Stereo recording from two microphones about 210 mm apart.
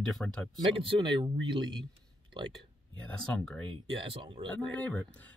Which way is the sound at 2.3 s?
20° right (ahead or behind).